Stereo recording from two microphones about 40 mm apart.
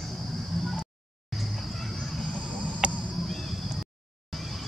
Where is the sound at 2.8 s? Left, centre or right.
Right.